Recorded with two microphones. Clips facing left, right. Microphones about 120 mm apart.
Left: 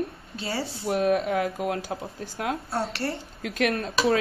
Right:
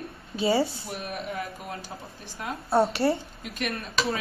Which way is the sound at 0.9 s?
90° left.